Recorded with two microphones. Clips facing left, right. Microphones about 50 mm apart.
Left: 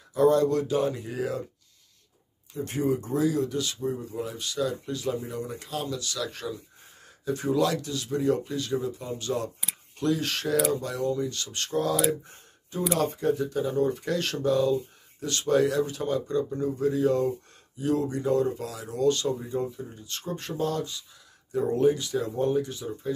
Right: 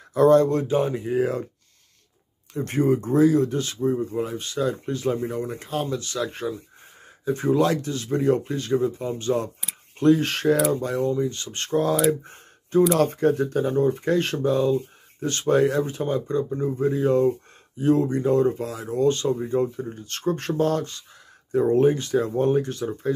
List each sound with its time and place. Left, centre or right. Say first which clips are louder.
0.1 s speech: right 5 dB; right
2.5 s speech: right 5 dB; right
12.1 s a sound: right 6 dB; right
12.9 s speech: right 5 dB; right
13.8 s speech: right 6 dB; right